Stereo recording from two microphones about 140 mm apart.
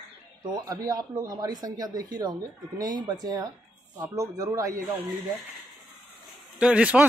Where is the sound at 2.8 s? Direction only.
30° right (ahead or behind).